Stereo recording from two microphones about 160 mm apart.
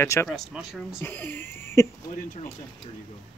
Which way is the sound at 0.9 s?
10° left (ahead or behind).